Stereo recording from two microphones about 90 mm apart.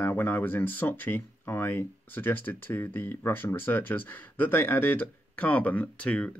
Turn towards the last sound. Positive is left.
turn(degrees=10)  # may be behind; listen again after turning